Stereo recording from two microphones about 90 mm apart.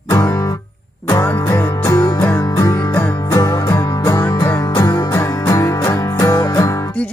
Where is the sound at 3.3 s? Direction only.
40° left (ahead or behind).